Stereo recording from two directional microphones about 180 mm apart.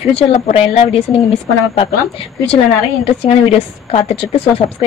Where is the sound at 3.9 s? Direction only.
35° left (ahead or behind).